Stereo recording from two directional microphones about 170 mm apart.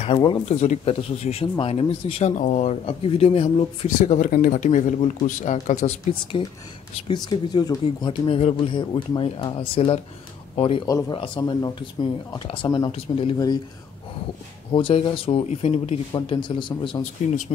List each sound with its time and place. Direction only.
0.2 s speech: 30° left (ahead or behind)
2.3 s speech: 45° left (ahead or behind)
4.0 s speech: 50° left (ahead or behind)
7.2 s speech: 25° left (ahead or behind)
10.9 s speech: 20° left (ahead or behind)
14.7 s speech: 30° left (ahead or behind)